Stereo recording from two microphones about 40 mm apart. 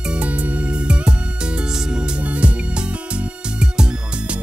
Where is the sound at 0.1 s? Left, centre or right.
Right.